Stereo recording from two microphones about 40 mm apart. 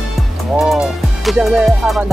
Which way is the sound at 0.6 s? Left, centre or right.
Centre.